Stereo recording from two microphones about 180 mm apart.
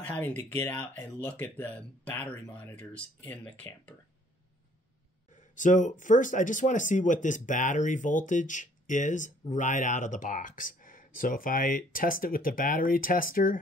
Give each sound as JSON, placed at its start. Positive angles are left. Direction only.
{"t": 0.0, "sound": "speech", "side_deg": 10}
{"t": 5.3, "sound": "speech", "side_deg": 45}